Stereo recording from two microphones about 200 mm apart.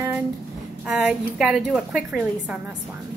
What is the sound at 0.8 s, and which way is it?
A woman's voice, 5° right (ahead or behind).